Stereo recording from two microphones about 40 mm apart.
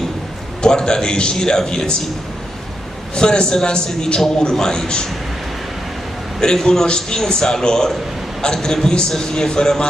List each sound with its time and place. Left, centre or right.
0.6 s a man's voice: centre
3.2 s a man's voice: centre
6.4 s a man's voice: centre